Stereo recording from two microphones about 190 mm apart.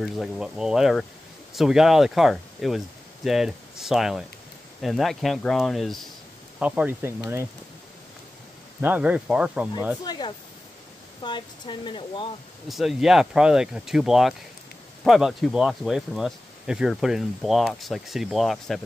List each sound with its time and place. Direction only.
0.0 s speech: 5° right (ahead or behind)
8.8 s speech: 10° right (ahead or behind)
10.0 s speech: 20° left (ahead or behind)
12.6 s speech: centre (ahead or behind)